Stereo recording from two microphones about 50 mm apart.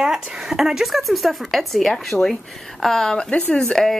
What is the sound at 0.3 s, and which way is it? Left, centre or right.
Speech, centre.